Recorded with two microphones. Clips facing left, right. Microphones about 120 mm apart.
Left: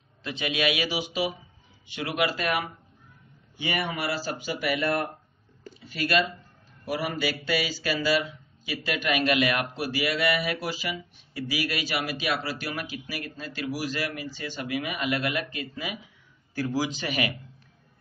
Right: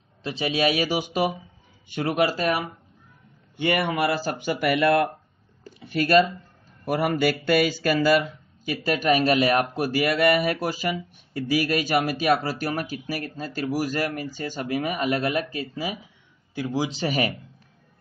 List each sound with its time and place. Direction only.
0.2 s speech: 35° right (ahead or behind)
3.5 s speech: 60° right (ahead or behind)
5.8 s a man's voice: 50° right (ahead or behind); by 16.0 s 30° right (ahead or behind)
16.5 s a man's voice: 20° right (ahead or behind)
16.9 s speech: 35° right (ahead or behind)